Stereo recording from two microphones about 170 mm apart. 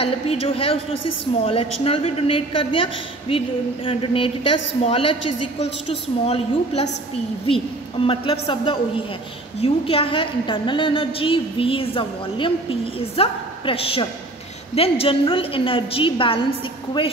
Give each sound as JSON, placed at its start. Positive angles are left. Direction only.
{"t": 0.0, "sound": "a woman's voice", "side_deg": 35}